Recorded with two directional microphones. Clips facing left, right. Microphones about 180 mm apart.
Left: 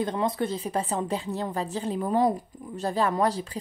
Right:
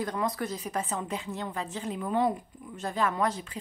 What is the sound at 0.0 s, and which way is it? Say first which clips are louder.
A woman's voice: left 4 dB; 25° left (ahead or behind).